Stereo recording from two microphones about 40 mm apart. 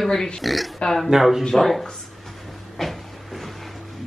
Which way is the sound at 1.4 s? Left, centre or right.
Centre.